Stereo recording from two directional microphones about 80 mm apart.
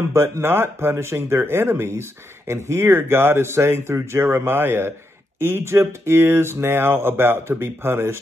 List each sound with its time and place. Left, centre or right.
0.1 s speech: right